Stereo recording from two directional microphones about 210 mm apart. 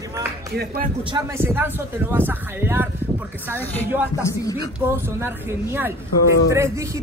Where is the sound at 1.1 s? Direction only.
10° right (ahead or behind).